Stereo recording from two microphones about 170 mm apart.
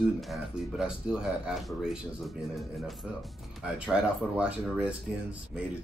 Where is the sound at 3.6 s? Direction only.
5° right (ahead or behind).